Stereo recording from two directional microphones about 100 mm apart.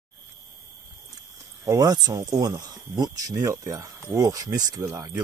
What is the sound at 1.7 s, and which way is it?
Speech, 40° right (ahead or behind).